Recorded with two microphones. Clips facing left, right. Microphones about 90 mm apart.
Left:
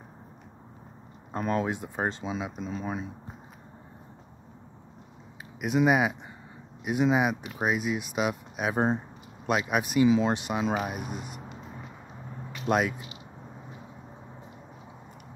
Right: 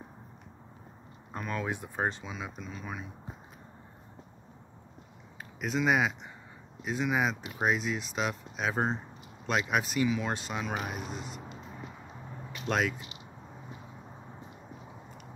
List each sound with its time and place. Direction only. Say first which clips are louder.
1.3 s speech: left 6 dB; 35° left (ahead or behind)
5.6 s speech: left 4 dB; 10° left (ahead or behind)
7.5 s speech: left 2 dB; 5° left (ahead or behind)
10.0 s speech: left 8 dB; 20° left (ahead or behind); by 11.4 s 5° left (ahead or behind)
12.6 s speech: left 4 dB; 10° left (ahead or behind)